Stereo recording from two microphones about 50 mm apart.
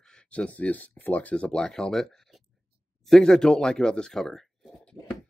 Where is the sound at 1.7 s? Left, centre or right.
Centre.